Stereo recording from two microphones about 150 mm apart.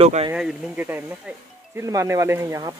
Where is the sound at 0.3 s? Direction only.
10° right (ahead or behind).